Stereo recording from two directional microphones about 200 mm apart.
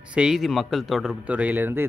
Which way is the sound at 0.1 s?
5° right (ahead or behind).